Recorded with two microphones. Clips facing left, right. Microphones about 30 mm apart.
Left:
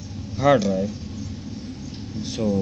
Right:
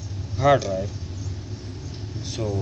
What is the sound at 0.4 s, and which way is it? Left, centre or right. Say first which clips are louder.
Speech: left 1 dB; left.